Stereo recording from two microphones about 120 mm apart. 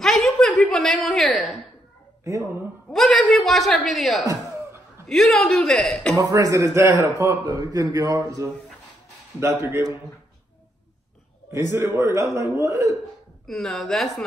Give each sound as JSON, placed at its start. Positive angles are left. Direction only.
{"t": 0.0, "sound": "chuckle", "side_deg": 0}
{"t": 2.9, "sound": "a woman's voice", "side_deg": 0}
{"t": 6.3, "sound": "speech", "side_deg": -25}
{"t": 11.7, "sound": "speech", "side_deg": -20}
{"t": 13.5, "sound": "a woman's voice", "side_deg": 5}